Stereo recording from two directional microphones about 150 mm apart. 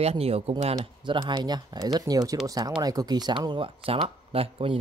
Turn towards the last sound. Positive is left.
turn(degrees=-40)  # may be behind; listen again after turning